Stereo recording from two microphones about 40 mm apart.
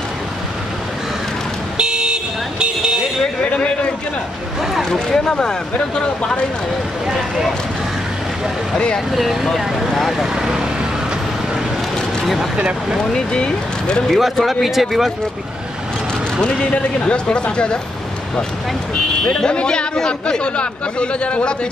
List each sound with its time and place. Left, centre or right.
1.8 s vehicle: right
3.5 s a sound: left
4.8 s speech: centre
8.7 s a man's voice: left
9.1 s speech: centre
10.1 s speech: centre
13.1 s a man's voice: left
14.0 s speech: centre
16.3 s a man's voice: left
19.2 s a man's voice: left